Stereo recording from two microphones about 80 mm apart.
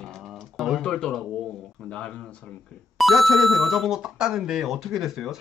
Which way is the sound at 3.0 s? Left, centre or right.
Centre.